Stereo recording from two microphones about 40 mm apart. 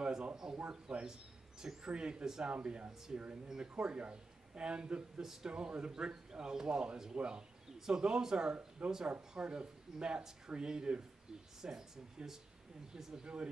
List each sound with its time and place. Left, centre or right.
0.4 s a man's voice: centre; by 3.3 s right
3.4 s a man's voice: centre
5.2 s speech: centre
5.5 s a man's voice: right